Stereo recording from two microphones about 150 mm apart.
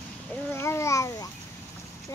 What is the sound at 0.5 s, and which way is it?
Babbling, 15° left (ahead or behind).